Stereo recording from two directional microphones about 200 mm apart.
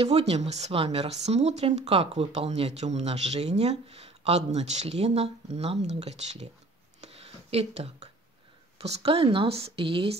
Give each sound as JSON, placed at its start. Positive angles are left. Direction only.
{"t": 0.0, "sound": "speech", "side_deg": -30}
{"t": 7.0, "sound": "a sound", "side_deg": -30}
{"t": 8.8, "sound": "speech", "side_deg": -30}